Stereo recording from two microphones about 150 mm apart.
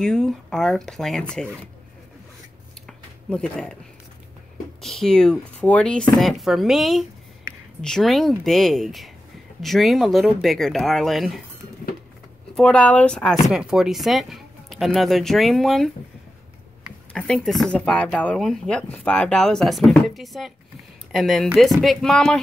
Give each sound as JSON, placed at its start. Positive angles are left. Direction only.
{"t": 0.0, "sound": "speech", "side_deg": 5}
{"t": 2.9, "sound": "a sound", "side_deg": 5}
{"t": 4.8, "sound": "speech", "side_deg": 5}
{"t": 12.5, "sound": "speech", "side_deg": 5}
{"t": 17.1, "sound": "speech", "side_deg": 5}